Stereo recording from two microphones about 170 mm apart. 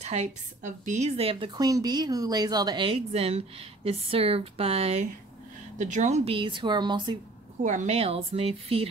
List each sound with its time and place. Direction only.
0.0 s a woman's voice: 40° right (ahead or behind); by 7.2 s 25° right (ahead or behind)
7.6 s a woman's voice: 45° right (ahead or behind)